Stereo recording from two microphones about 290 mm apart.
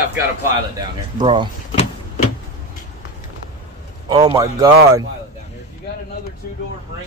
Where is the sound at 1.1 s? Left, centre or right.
Centre.